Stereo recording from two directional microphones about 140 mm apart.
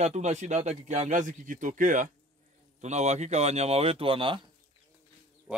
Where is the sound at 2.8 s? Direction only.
55° right (ahead or behind).